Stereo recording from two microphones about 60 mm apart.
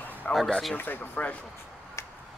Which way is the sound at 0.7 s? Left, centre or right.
Left.